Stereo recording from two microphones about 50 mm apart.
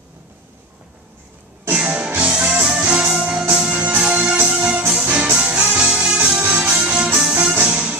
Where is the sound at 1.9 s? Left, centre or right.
Right.